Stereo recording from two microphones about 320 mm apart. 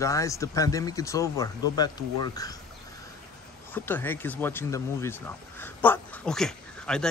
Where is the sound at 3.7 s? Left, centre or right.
Centre.